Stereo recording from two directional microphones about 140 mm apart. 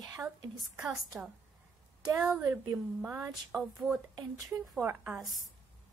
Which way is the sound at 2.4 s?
20° right (ahead or behind).